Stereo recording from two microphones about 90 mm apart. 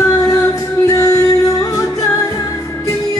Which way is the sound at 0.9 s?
40° left (ahead or behind).